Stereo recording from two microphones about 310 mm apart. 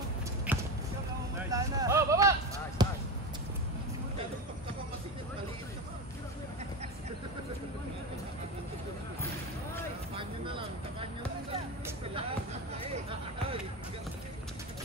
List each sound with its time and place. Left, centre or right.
0.5 s basketball bounce: centre
10.1 s vehicle: centre